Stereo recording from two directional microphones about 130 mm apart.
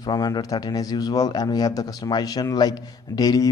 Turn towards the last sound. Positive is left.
turn(degrees=30)  # may be behind; listen again after turning